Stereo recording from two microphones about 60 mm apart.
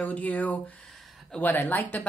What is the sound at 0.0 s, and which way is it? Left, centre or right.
Speech, left.